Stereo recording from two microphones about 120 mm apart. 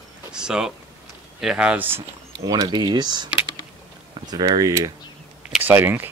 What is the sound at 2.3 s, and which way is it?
Speech, 35° right (ahead or behind).